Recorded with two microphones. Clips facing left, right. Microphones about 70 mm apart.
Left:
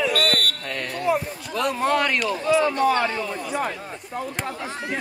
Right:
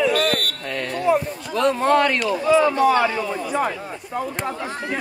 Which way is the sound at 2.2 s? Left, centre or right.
Centre.